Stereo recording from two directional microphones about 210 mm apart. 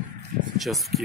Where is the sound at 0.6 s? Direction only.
Centre (ahead or behind).